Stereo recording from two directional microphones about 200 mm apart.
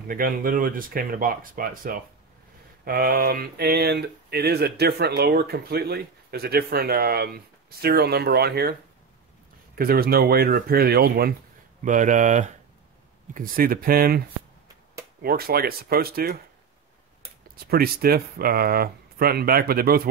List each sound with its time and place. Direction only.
0.1 s speech: 45° right (ahead or behind)
9.8 s speech: 50° right (ahead or behind)
11.8 s speech: 40° right (ahead or behind)
15.2 s speech: 50° right (ahead or behind)
17.6 s speech: 50° right (ahead or behind)